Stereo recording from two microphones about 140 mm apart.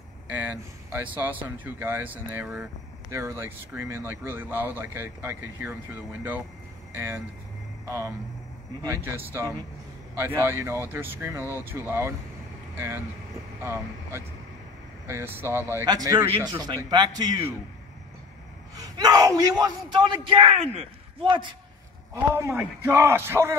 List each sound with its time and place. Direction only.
0.3 s speech: 15° right (ahead or behind)
15.8 s speech: 25° right (ahead or behind)
18.8 s a man's voice: 25° right (ahead or behind)
22.1 s speech: 15° right (ahead or behind)